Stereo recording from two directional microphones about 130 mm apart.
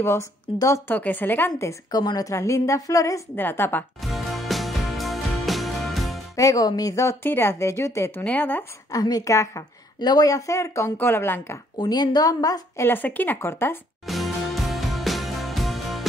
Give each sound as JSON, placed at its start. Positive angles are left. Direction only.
{"t": 0.0, "sound": "a woman's voice", "side_deg": 20}
{"t": 4.0, "sound": "music", "side_deg": 0}
{"t": 6.3, "sound": "a woman's voice", "side_deg": 25}
{"t": 8.9, "sound": "a woman's voice", "side_deg": 30}
{"t": 11.8, "sound": "a woman's voice", "side_deg": 30}
{"t": 12.8, "sound": "speech", "side_deg": 15}
{"t": 14.0, "sound": "music", "side_deg": 0}